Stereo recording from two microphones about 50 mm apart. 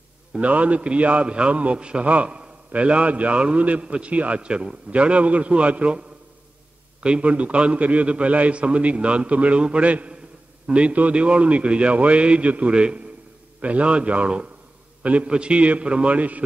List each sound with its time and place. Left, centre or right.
0.3 s a man's voice: right